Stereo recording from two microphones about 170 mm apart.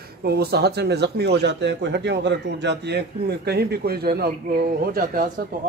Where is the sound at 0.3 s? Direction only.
70° right (ahead or behind).